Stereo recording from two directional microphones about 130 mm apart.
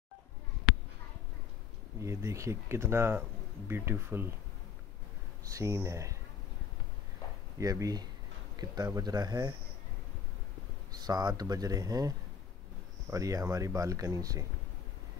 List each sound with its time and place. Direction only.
2.0 s speech: 25° right (ahead or behind)
5.4 s speech: 25° right (ahead or behind)
7.5 s speech: 25° right (ahead or behind)
10.9 s speech: 30° right (ahead or behind)